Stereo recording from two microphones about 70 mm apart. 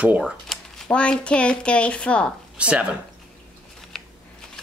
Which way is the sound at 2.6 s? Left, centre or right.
Centre.